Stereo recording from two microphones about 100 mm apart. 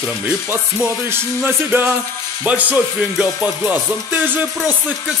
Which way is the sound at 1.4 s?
20° right (ahead or behind).